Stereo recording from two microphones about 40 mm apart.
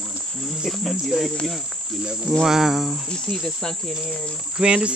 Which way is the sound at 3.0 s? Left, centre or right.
Centre.